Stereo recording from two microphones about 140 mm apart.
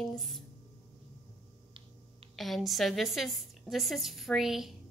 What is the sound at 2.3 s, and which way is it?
A woman's voice, centre (ahead or behind).